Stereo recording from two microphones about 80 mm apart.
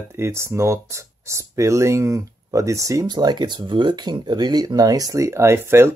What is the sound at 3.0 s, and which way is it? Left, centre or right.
Speech, right.